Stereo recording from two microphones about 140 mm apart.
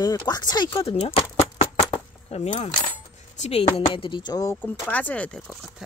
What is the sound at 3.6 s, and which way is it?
Speech, 35° left (ahead or behind).